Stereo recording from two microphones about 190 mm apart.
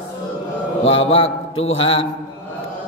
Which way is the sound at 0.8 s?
30° left (ahead or behind).